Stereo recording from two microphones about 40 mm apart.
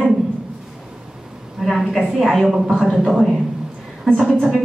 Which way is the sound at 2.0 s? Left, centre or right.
Centre.